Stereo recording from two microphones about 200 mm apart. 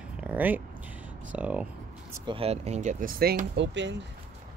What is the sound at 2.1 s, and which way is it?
Speech, 25° right (ahead or behind).